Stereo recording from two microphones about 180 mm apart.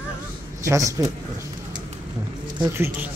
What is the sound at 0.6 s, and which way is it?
Speech, 15° right (ahead or behind).